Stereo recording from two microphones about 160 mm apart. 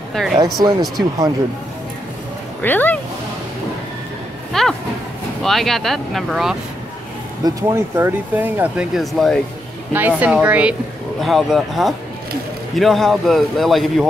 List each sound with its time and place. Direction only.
0.2 s a man's voice: 5° left (ahead or behind)
0.7 s speech: 25° right (ahead or behind)
2.6 s speech: 10° left (ahead or behind)
4.5 s a sound: centre (ahead or behind)
5.4 s a man's voice: centre (ahead or behind)
7.4 s speech: 20° right (ahead or behind); by 9.4 s centre (ahead or behind)
9.9 s a man's voice: 10° right (ahead or behind)